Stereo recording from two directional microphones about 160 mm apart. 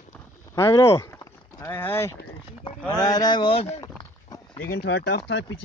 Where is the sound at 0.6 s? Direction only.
15° left (ahead or behind).